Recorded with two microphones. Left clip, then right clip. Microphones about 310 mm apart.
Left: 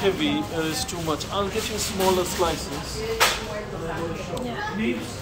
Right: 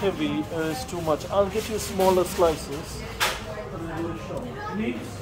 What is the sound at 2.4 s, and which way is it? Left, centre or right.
Speech, right.